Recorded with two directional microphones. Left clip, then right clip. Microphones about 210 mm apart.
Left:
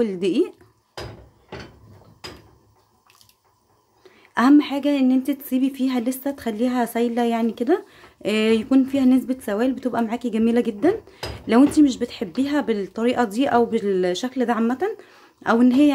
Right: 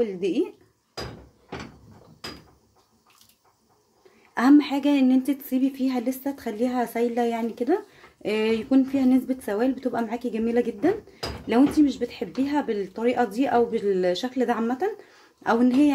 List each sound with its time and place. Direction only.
0.0 s speech: 20° left (ahead or behind)
4.3 s a woman's voice: 10° left (ahead or behind)